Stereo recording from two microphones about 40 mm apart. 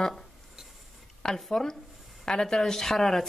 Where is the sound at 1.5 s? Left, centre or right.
Centre.